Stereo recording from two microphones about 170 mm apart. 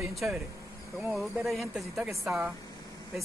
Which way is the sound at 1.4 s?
Centre (ahead or behind).